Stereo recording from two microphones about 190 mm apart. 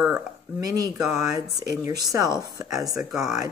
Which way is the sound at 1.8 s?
15° right (ahead or behind).